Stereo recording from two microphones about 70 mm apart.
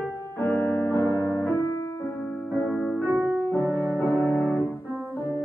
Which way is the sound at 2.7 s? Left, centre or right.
Centre.